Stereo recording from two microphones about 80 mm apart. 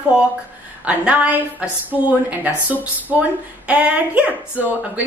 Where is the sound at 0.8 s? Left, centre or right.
Centre.